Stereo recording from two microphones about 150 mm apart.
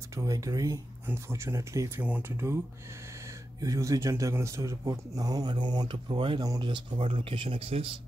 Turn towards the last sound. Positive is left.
turn(degrees=-40)  # may be behind; listen again after turning